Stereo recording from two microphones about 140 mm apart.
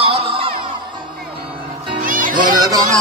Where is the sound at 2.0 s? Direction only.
80° right.